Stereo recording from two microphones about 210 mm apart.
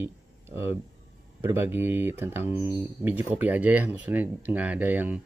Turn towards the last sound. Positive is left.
turn(degrees=-10)  # may be behind; listen again after turning